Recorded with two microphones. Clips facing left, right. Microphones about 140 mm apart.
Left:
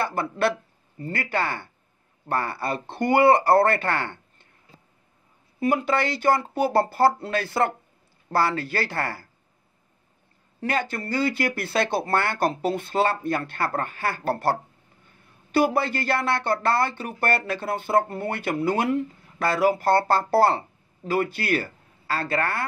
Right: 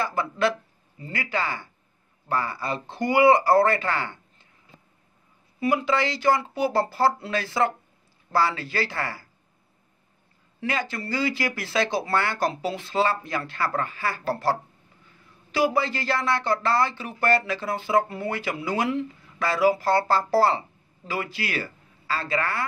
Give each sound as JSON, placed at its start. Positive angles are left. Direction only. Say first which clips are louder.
{"t": 0.0, "sound": "a man's voice", "louder": "even", "side_deg": 60}
{"t": 5.6, "sound": "a man's voice", "louder": "left 1 dB", "side_deg": 50}
{"t": 10.6, "sound": "a man's voice", "louder": "left 2 dB", "side_deg": 55}